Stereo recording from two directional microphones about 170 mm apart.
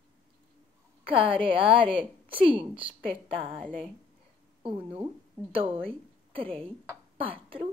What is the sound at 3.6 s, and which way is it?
Speech, 5° left (ahead or behind).